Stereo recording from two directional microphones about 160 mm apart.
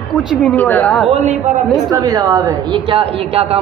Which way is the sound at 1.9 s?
25° right (ahead or behind).